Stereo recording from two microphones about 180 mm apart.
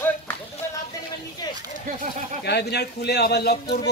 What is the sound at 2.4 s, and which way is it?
A man's voice, 65° left (ahead or behind).